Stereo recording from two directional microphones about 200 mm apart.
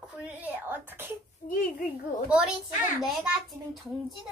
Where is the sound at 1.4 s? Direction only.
45° left (ahead or behind).